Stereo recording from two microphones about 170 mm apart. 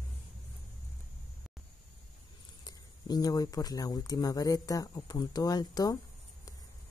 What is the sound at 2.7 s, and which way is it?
A woman's voice, 20° left (ahead or behind).